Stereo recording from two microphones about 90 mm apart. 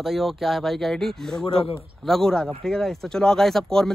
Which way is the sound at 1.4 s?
90° left.